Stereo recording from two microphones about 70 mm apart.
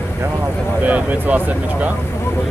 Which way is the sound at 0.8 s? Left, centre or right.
Right.